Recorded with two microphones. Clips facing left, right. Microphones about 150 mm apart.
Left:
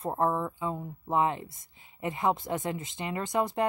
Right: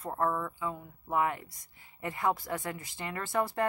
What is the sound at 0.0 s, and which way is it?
Speech, 25° left (ahead or behind).